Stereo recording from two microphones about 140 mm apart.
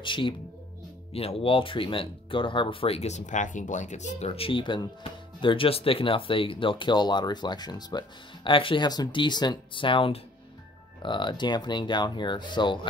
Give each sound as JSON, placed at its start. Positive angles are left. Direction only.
{"t": 0.0, "sound": "speech", "side_deg": 35}